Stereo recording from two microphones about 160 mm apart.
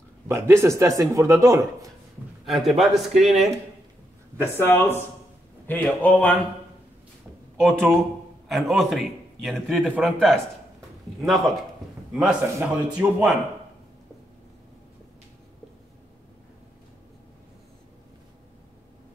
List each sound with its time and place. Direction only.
0.3 s speech: 15° right (ahead or behind)
2.4 s a man's voice: centre (ahead or behind)
4.4 s speech: 15° left (ahead or behind)
7.6 s a man's voice: 5° left (ahead or behind)